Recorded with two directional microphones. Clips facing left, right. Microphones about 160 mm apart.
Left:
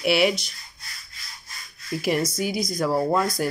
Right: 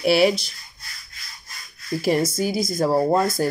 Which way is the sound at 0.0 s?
35° right (ahead or behind).